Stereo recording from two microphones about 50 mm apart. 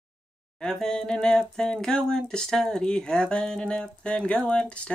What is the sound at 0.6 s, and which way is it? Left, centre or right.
Speech, centre.